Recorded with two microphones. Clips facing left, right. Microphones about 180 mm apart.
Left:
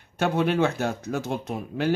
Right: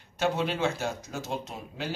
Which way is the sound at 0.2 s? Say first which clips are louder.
Left 5 dB; 55° left (ahead or behind).